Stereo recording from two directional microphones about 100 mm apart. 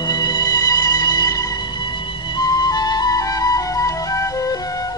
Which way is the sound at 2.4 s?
40° left (ahead or behind).